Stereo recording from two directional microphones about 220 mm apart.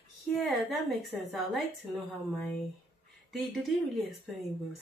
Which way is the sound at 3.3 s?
Centre (ahead or behind).